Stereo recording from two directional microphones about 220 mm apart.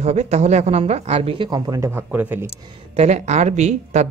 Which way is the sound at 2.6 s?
20° right (ahead or behind).